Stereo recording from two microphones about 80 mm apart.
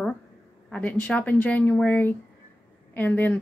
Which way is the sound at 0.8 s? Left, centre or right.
Centre.